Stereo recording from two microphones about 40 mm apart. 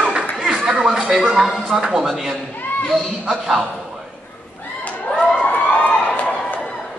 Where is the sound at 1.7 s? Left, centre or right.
Right.